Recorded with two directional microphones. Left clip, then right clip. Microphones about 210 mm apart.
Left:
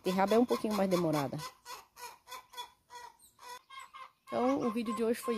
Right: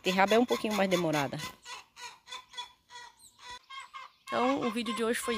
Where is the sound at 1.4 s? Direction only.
50° left (ahead or behind).